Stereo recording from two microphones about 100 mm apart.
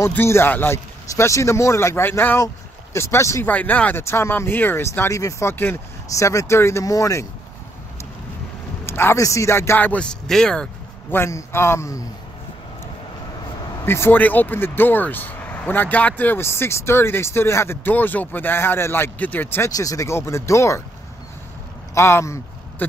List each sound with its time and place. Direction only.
0.1 s speech: 25° left (ahead or behind)
3.4 s speech: 15° left (ahead or behind); by 7.2 s 30° left (ahead or behind)
8.8 s speech: 25° left (ahead or behind); by 10.7 s 5° left (ahead or behind)
11.1 s speech: 25° left (ahead or behind)
13.8 s speech: 25° left (ahead or behind)
19.7 s speech: 35° left (ahead or behind)
21.9 s speech: 30° left (ahead or behind)